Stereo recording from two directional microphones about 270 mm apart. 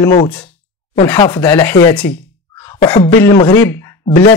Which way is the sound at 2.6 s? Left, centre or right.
Centre.